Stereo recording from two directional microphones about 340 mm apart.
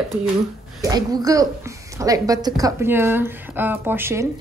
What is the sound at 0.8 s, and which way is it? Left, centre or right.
A woman's voice, centre.